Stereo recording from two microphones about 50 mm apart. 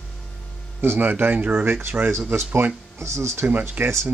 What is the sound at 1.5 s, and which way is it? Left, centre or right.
Speech, right.